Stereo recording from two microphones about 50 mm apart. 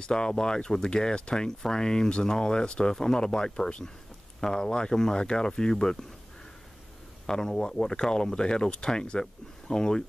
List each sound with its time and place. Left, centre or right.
0.0 s speech: centre
7.2 s speech: centre